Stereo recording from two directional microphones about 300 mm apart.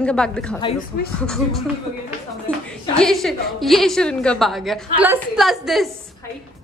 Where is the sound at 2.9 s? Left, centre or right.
Centre.